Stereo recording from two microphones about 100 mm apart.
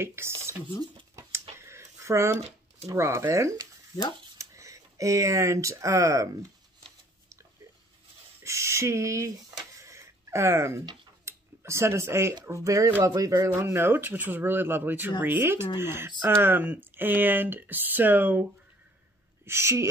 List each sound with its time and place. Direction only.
0.0 s speech: 25° right (ahead or behind)
1.6 s a sound: 30° right (ahead or behind)
2.9 s speech: 30° right (ahead or behind)
8.4 s a sound: 30° right (ahead or behind)
11.2 s speech: 25° right (ahead or behind)
13.5 s speech: 25° right (ahead or behind)
19.4 s speech: 25° right (ahead or behind)